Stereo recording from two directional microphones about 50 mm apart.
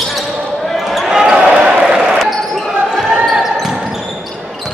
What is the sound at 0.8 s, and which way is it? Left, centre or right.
Basketball bounce, centre.